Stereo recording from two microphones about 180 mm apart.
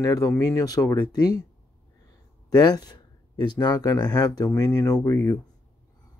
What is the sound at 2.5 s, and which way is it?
Speech, 20° left (ahead or behind).